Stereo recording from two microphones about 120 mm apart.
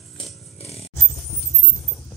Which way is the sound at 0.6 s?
60° left (ahead or behind).